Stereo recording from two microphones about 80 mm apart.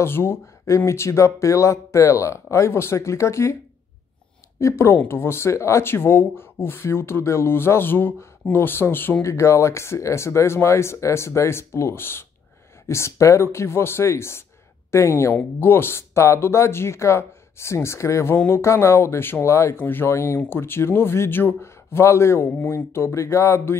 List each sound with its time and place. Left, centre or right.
0.0 s speech: left
4.6 s speech: left
19.8 s speech: left